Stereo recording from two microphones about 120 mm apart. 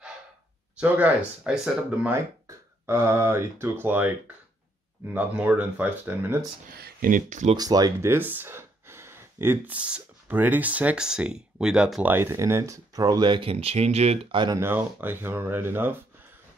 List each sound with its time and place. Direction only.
0.7 s speech: 15° right (ahead or behind)
2.1 s speech: 20° right (ahead or behind)
5.1 s speech: 10° right (ahead or behind)
7.1 s speech: 90° right
7.5 s speech: 30° right (ahead or behind)
8.1 s speech: 15° right (ahead or behind); by 14.2 s 60° right (ahead or behind)
14.3 s speech: 40° right (ahead or behind)
14.6 s speech: 15° right (ahead or behind)